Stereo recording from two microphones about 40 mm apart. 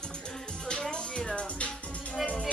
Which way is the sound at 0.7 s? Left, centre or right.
Left.